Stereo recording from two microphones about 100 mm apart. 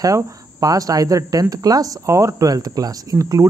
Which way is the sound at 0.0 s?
35° right (ahead or behind).